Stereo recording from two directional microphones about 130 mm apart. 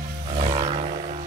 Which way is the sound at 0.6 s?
55° right (ahead or behind).